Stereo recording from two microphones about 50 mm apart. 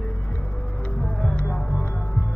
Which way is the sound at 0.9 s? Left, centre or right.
Centre.